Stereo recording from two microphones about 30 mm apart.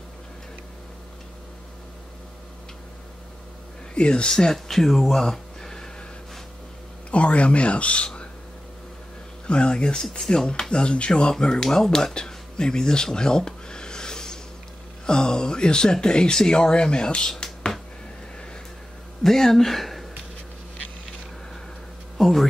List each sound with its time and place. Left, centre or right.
3.9 s speech: left
4.3 s speech: centre
4.6 s speech: centre
7.1 s speech: left
9.5 s speech: left; by 12.1 s centre
12.3 s a sound: left
15.0 s speech: left
17.3 s a sound: left
19.2 s speech: centre
22.1 s speech: centre